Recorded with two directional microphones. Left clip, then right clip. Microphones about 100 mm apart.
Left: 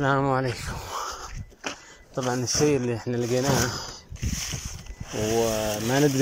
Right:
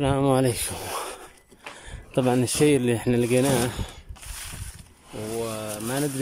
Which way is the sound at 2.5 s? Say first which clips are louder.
Left 1 dB; 45° right (ahead or behind).